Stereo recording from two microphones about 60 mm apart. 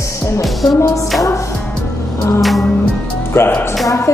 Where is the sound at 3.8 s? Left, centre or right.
Left.